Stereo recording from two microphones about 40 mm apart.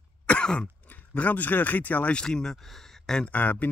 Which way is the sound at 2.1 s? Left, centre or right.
Centre.